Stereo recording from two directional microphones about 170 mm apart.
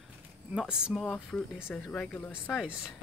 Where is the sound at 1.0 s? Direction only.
5° left (ahead or behind).